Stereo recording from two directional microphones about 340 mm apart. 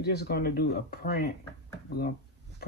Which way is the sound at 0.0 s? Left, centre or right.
Left.